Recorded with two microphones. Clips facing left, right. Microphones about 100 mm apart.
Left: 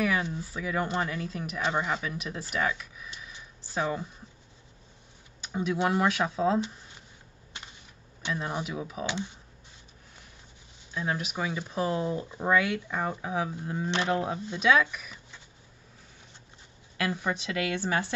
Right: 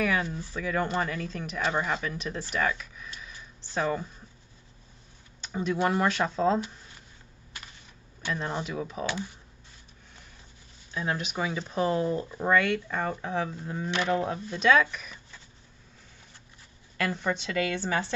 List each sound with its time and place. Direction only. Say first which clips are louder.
0.0 s speech: even; 5° left (ahead or behind)
5.4 s a sound: even; 5° left (ahead or behind)
5.9 s speech: even; 5° left (ahead or behind)
7.5 s a sound: left 1 dB; 25° left (ahead or behind)
8.3 s speech: right 1 dB; 5° left (ahead or behind)
9.0 s speech: left 1 dB; 20° left (ahead or behind)
10.9 s speech: even; centre (ahead or behind)
13.8 s speech: even; 25° left (ahead or behind)
14.1 s speech: right 1 dB; 10° left (ahead or behind)
17.0 s speech: right 1 dB; 10° left (ahead or behind)